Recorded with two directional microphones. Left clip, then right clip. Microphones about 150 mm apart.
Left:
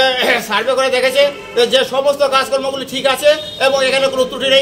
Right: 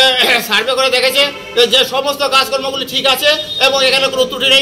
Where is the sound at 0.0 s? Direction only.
10° left (ahead or behind).